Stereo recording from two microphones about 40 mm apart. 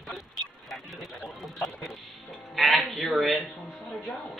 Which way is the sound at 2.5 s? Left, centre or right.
Centre.